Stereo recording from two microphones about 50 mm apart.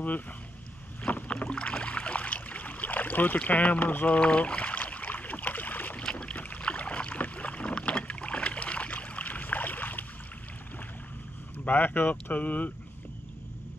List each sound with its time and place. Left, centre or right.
1.0 s rowboat: left
3.4 s speech: left
3.9 s boat: left
6.0 s boat: centre
6.6 s rowboat: left
11.6 s speech: left